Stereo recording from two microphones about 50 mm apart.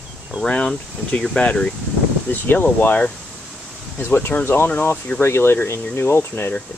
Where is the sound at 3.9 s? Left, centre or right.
Left.